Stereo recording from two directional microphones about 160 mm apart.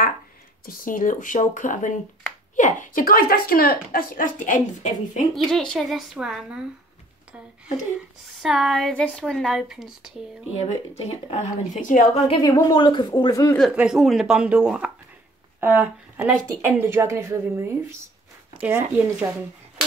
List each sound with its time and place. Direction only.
0.7 s speech: 55° left (ahead or behind)
5.3 s a woman's voice: 5° left (ahead or behind)
8.4 s a woman's voice: centre (ahead or behind)
10.6 s speech: 40° left (ahead or behind)
12.3 s speech: 25° left (ahead or behind)
13.6 s a woman's voice: 5° right (ahead or behind)